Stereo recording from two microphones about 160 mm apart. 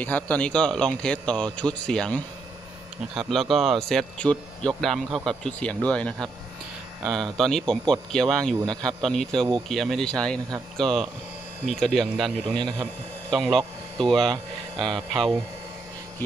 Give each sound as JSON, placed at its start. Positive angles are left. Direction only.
{"t": 0.0, "sound": "speech", "side_deg": 10}
{"t": 7.3, "sound": "speech", "side_deg": 5}
{"t": 12.5, "sound": "a man's voice", "side_deg": -25}
{"t": 13.3, "sound": "speech", "side_deg": 0}
{"t": 14.3, "sound": "speech", "side_deg": -30}